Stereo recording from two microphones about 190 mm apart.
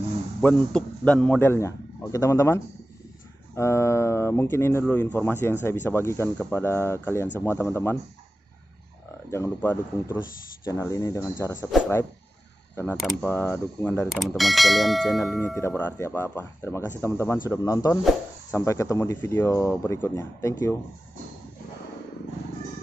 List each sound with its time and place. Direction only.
0.4 s a man's voice: 5° left (ahead or behind)
9.3 s a man's voice: 10° left (ahead or behind)
12.9 s clang: centre (ahead or behind)
13.3 s a man's voice: 10° left (ahead or behind)
14.0 s clang: centre (ahead or behind)
15.4 s a man's voice: 10° left (ahead or behind)